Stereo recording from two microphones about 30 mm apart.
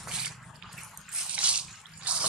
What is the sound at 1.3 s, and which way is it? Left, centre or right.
Drip, right.